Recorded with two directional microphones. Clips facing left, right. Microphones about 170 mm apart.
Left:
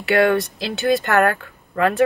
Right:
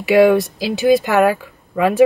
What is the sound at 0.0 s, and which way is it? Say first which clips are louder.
Speech: right 5 dB; centre (ahead or behind).